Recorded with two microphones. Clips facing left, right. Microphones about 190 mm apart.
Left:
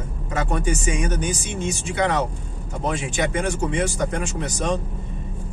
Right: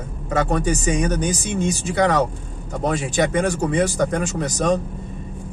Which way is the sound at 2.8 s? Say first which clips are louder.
Right 4 dB; 40° right (ahead or behind).